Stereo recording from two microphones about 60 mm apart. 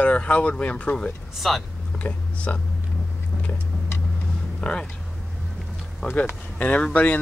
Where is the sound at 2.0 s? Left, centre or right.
Left.